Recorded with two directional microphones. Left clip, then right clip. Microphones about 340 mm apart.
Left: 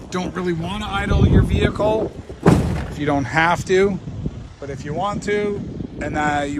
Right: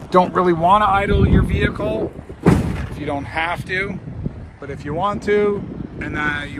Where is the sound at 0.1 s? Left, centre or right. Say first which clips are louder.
Right 10 dB; centre.